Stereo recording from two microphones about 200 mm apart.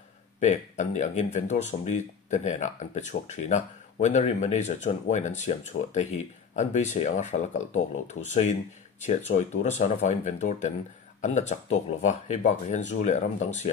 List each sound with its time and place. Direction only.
0.4 s speech: 35° left (ahead or behind)